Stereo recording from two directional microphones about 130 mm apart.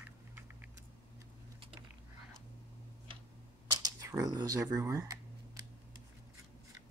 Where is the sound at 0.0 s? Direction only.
10° right (ahead or behind).